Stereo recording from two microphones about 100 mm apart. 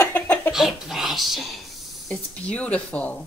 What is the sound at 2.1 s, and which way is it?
Speech, 15° left (ahead or behind).